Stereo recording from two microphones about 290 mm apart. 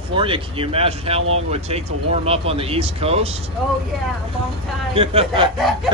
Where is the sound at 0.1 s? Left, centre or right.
Centre.